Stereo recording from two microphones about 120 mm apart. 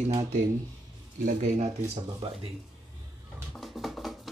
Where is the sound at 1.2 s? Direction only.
75° right (ahead or behind).